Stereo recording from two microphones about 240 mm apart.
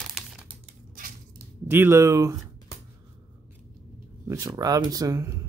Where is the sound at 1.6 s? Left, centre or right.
Centre.